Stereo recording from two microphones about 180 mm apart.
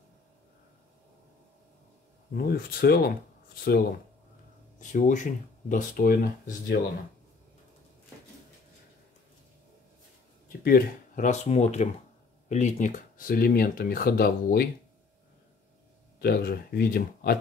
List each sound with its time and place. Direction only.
2.3 s speech: 60° left (ahead or behind)
4.7 s speech: 45° left (ahead or behind)
10.6 s speech: 50° left (ahead or behind)
16.2 s speech: 60° left (ahead or behind)